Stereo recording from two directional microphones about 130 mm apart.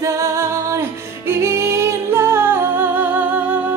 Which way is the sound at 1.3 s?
20° right (ahead or behind).